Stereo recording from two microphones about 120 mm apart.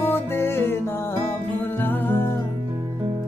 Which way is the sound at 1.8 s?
15° left (ahead or behind).